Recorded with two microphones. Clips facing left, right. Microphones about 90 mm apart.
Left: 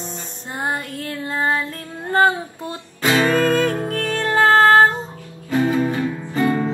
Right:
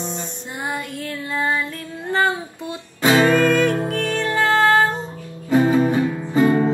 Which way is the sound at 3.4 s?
35° left (ahead or behind).